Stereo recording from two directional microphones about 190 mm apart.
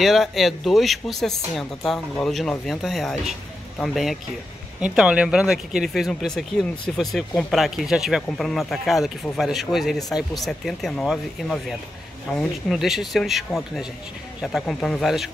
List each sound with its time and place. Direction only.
0.0 s speech: centre (ahead or behind)